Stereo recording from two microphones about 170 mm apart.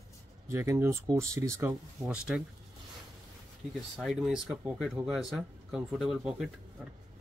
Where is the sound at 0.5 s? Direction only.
15° right (ahead or behind).